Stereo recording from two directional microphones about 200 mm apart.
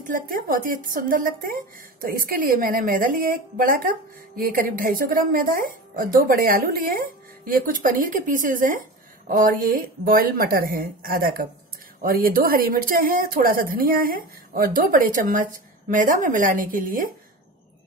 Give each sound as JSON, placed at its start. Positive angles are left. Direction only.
{"t": 0.0, "sound": "a woman's voice", "side_deg": -45}